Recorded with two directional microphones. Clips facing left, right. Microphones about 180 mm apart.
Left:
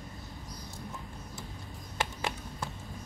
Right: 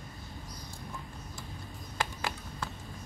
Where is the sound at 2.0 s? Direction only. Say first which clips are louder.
Left 1 dB; 20° left (ahead or behind).